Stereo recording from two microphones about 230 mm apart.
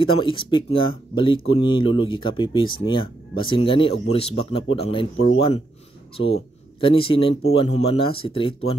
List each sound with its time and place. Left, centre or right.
0.0 s speech: left
6.1 s speech: left